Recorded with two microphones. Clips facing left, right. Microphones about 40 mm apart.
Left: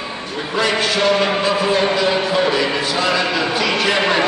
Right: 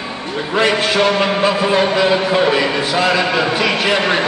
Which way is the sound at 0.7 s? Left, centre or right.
Right.